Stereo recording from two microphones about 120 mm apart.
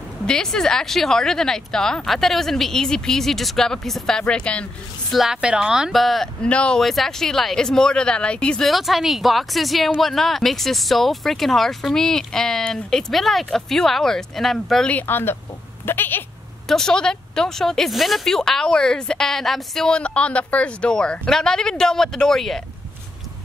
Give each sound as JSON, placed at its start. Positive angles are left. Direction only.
{"t": 0.3, "sound": "speech", "side_deg": 5}
{"t": 5.1, "sound": "speech", "side_deg": -5}
{"t": 16.6, "sound": "speech", "side_deg": 5}